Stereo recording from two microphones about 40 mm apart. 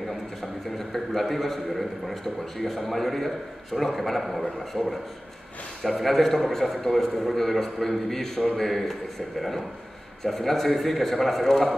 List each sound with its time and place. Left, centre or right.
0.4 s a man's voice: centre